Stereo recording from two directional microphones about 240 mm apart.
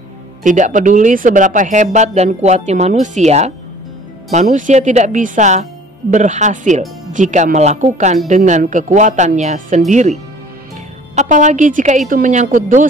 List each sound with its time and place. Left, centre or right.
0.4 s speech: right
11.1 s speech: right